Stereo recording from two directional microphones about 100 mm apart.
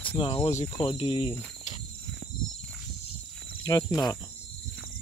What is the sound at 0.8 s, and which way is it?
Speech, 75° left (ahead or behind).